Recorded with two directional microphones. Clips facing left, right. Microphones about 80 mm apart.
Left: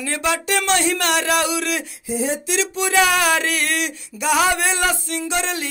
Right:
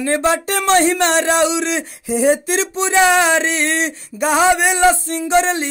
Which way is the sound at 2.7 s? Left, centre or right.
Right.